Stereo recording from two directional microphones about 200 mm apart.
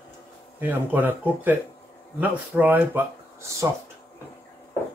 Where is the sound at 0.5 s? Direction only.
10° right (ahead or behind).